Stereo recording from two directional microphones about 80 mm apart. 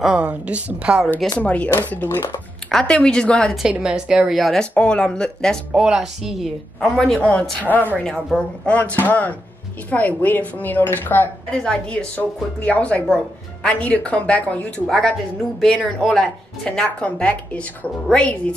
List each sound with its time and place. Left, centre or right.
0.0 s a woman's voice: centre
1.4 s speech: centre
2.0 s speech: left
2.7 s speech: centre
3.6 s a woman's voice: centre
4.4 s speech: centre
5.7 s a woman's voice: centre
6.8 s speech: centre
7.2 s speech: centre
8.0 s speech: centre
8.7 s speech: centre
11.5 s speech: centre
14.9 s speech: centre
17.0 s speech: centre